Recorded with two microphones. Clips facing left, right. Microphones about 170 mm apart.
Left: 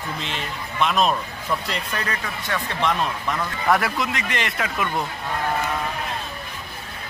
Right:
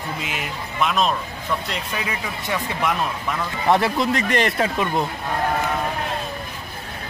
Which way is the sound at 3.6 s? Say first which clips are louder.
Right 3 dB; 25° right (ahead or behind).